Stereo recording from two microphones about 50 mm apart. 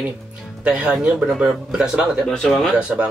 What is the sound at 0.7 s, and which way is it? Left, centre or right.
Speech, right.